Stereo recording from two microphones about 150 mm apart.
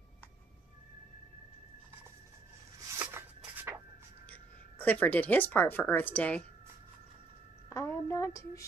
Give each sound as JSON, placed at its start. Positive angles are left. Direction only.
{"t": 3.0, "sound": "a sound", "side_deg": -15}
{"t": 4.3, "sound": "speech", "side_deg": 10}
{"t": 7.7, "sound": "a woman's voice", "side_deg": 20}